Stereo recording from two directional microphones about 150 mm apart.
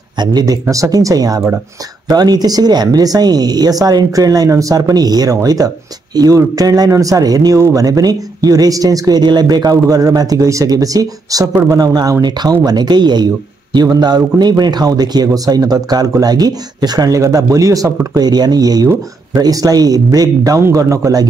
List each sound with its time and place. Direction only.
0.2 s speech: 25° right (ahead or behind)